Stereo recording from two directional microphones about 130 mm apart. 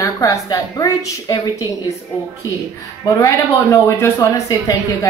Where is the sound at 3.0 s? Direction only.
25° left (ahead or behind).